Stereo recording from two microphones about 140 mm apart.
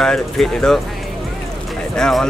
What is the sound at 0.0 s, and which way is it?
Speech, 5° left (ahead or behind).